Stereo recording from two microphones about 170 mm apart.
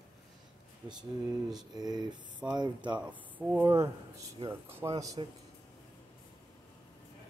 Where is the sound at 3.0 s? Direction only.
10° right (ahead or behind).